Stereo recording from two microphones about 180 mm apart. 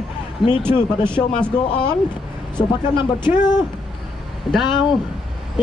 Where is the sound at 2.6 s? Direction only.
25° left (ahead or behind).